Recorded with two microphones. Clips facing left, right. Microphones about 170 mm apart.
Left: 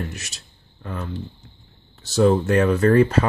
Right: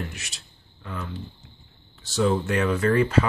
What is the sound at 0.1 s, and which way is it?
Speech, 40° left (ahead or behind).